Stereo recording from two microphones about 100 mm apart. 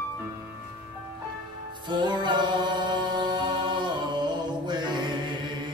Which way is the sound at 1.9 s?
50° right (ahead or behind).